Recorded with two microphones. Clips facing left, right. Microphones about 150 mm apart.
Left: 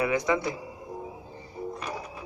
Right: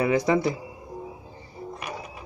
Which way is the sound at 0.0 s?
30° right (ahead or behind).